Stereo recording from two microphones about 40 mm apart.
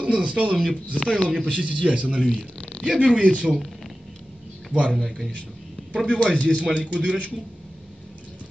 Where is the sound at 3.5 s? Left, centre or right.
Centre.